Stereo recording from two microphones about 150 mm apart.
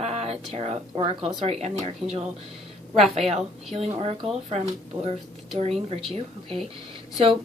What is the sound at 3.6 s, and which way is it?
Speech, 45° right (ahead or behind).